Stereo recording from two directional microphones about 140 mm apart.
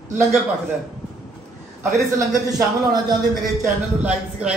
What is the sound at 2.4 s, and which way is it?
Speech, 30° right (ahead or behind).